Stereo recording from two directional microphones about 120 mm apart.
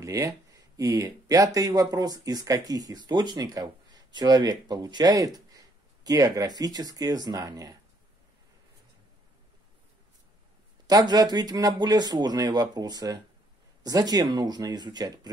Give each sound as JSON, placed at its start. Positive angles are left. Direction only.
{"t": 0.0, "sound": "speech", "side_deg": -30}
{"t": 10.9, "sound": "speech", "side_deg": -35}